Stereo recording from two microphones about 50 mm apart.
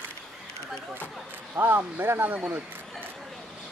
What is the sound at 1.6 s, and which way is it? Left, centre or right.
Speech, right.